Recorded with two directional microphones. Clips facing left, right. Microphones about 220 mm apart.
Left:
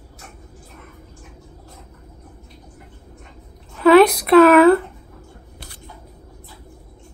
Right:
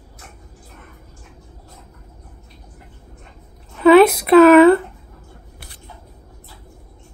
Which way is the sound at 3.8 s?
Centre (ahead or behind).